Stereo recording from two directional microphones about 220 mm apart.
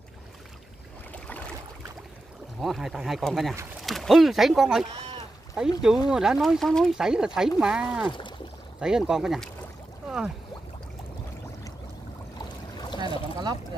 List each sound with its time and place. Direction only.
1.1 s boat: 5° left (ahead or behind)
2.6 s speech: centre (ahead or behind)
10.0 s boat: 5° right (ahead or behind)
12.7 s boat: 20° left (ahead or behind)